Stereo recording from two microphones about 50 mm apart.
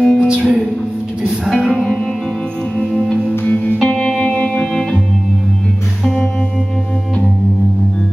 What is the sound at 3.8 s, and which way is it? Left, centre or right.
Music, centre.